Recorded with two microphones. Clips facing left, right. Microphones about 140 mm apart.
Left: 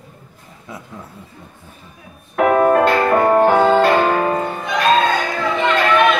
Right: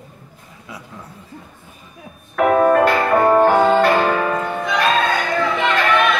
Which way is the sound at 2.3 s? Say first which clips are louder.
Even; 20° left (ahead or behind).